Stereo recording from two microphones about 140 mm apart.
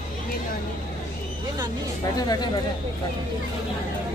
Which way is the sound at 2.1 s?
30° left (ahead or behind).